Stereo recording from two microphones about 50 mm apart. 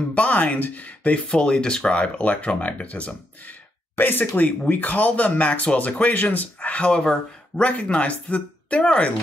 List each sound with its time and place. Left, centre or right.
0.1 s speech: left
1.3 s speech: centre
3.9 s speech: left